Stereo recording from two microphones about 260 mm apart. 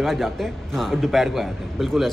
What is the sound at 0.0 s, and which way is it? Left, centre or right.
A man's voice, centre.